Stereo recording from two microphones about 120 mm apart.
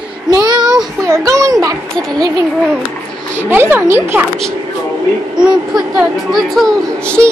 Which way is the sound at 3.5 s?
15° right (ahead or behind).